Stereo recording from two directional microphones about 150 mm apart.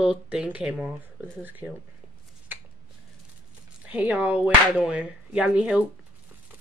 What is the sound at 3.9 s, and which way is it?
Speech, 10° right (ahead or behind).